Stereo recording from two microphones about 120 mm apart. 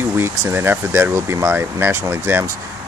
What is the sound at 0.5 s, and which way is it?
Speech, 20° right (ahead or behind).